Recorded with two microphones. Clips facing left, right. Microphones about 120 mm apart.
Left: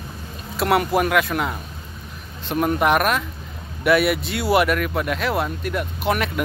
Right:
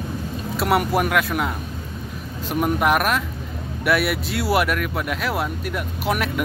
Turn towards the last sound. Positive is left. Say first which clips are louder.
# left 1 dB
turn(degrees=-5)  # may be behind; listen again after turning